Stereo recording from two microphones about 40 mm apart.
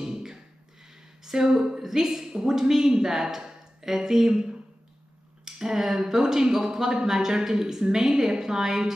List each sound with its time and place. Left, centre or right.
0.0 s music: centre
1.2 s a woman's voice: centre